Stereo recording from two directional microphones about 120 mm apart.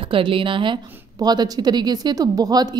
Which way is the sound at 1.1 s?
35° right (ahead or behind).